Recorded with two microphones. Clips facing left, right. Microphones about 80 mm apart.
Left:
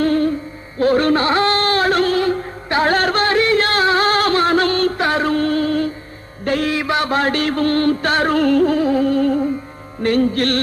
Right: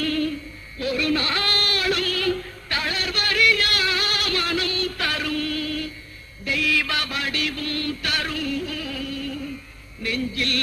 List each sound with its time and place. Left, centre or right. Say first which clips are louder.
0.0 s music: left 8 dB; left
1.2 s chant: left 10 dB; left
3.3 s a sound: left 7 dB; left
4.9 s music: left 9 dB; left
6.7 s a sound: left 7 dB; left
7.2 s music: left 11 dB; left
8.7 s music: left 15 dB; left